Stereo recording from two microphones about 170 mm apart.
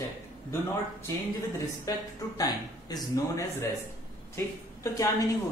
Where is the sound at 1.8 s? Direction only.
20° left (ahead or behind).